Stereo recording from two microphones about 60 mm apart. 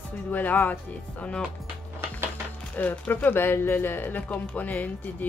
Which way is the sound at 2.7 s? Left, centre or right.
Left.